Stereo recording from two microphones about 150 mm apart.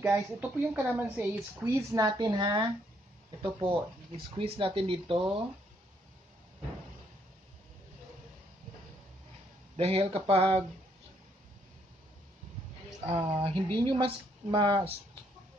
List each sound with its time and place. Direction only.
0.0 s a woman's voice: 15° right (ahead or behind); by 5.4 s 35° right (ahead or behind)
9.8 s a woman's voice: 40° right (ahead or behind)
13.3 s a woman's voice: 35° right (ahead or behind)